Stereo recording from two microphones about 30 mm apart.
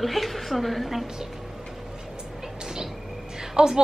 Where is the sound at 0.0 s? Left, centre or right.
Centre.